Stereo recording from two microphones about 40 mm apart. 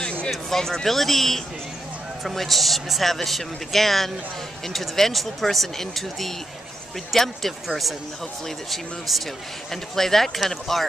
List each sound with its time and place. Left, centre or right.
0.3 s speech: centre